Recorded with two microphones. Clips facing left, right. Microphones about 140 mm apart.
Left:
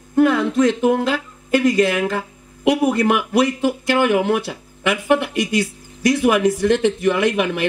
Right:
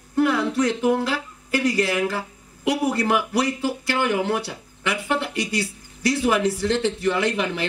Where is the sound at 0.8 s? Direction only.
20° left (ahead or behind).